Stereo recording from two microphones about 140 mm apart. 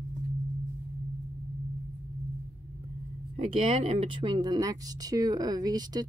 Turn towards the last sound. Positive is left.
turn(degrees=-30)  # may be behind; listen again after turning